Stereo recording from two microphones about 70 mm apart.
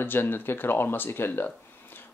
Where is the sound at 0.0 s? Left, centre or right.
Left.